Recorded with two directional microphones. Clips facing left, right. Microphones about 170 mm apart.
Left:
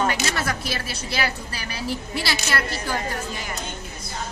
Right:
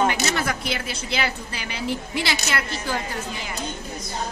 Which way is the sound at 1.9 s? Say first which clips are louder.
Right 1 dB; 15° right (ahead or behind).